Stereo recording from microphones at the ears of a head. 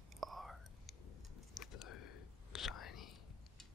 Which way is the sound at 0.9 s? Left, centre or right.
Left.